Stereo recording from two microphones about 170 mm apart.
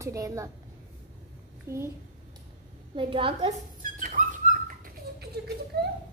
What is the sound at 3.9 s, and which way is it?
Dog, 50° right (ahead or behind).